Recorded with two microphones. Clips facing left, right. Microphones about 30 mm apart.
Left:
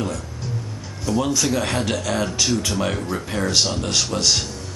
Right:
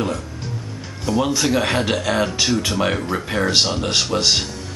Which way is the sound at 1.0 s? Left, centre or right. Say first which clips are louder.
Right 2 dB; right.